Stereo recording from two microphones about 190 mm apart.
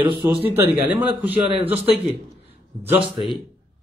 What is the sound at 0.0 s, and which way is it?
Speech, 25° right (ahead or behind).